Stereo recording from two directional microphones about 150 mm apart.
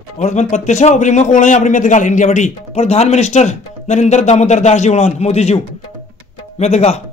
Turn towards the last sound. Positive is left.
turn(degrees=45)  # may be behind; listen again after turning